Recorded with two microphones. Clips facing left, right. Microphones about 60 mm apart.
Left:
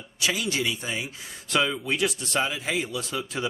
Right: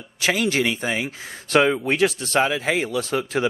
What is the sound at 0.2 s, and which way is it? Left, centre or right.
A man's voice, right.